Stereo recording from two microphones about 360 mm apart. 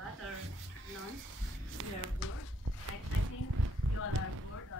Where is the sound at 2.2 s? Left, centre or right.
Left.